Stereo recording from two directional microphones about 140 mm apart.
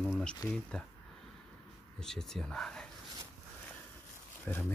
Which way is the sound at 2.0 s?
5° left (ahead or behind).